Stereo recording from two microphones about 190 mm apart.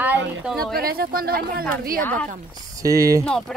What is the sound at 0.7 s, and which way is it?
Speech, 50° right (ahead or behind).